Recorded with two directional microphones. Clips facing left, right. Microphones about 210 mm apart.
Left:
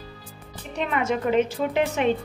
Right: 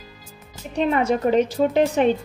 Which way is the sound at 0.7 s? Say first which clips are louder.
Right 5 dB; 35° right (ahead or behind).